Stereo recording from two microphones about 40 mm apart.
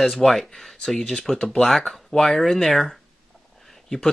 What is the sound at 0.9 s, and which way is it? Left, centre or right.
Speech, left.